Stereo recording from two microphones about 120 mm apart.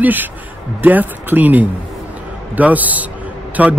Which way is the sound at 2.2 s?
15° right (ahead or behind).